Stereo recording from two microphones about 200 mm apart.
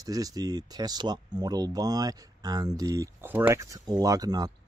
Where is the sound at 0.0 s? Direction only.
20° right (ahead or behind).